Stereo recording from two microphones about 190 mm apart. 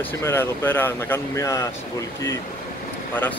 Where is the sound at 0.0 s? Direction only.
10° left (ahead or behind).